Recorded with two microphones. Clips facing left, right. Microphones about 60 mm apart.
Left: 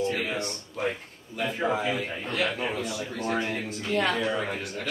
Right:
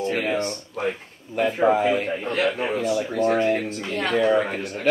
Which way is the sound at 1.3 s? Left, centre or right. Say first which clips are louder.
Right 8 dB; right.